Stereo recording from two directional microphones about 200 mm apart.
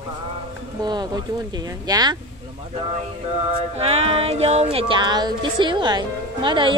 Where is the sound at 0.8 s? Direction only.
20° right (ahead or behind).